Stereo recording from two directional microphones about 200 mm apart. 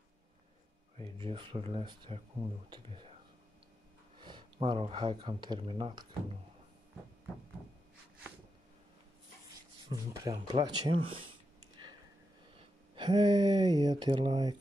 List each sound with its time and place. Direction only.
0.9 s speech: 30° right (ahead or behind)
4.2 s speech: 25° right (ahead or behind)
9.8 s speech: 20° right (ahead or behind)
12.5 s speech: 25° right (ahead or behind)